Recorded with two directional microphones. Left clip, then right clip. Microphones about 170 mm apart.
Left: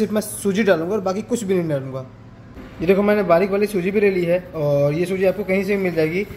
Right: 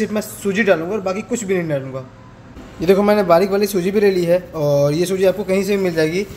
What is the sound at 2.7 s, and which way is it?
A man's voice, 15° right (ahead or behind).